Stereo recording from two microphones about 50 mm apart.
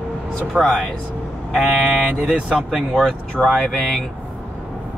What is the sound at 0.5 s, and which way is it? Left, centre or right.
Speech, right.